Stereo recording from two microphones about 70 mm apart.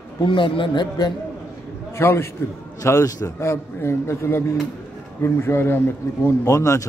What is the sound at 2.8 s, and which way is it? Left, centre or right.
Speech, left.